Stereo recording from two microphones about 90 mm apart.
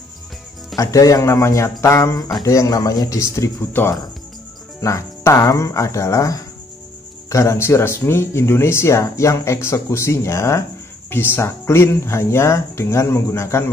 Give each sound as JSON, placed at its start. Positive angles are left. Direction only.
{"t": 0.7, "sound": "speech", "side_deg": 40}